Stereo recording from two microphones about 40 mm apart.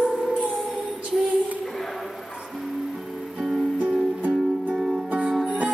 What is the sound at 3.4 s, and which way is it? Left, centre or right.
Music, centre.